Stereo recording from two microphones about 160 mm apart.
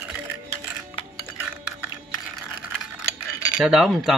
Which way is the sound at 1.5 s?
10° right (ahead or behind).